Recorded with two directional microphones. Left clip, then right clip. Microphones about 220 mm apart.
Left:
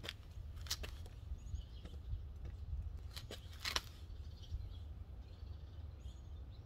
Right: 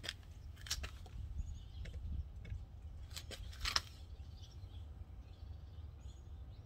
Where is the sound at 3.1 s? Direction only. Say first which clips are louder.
Right 1 dB; 15° right (ahead or behind).